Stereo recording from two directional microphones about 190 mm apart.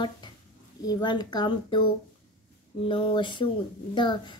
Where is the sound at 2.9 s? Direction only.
25° left (ahead or behind).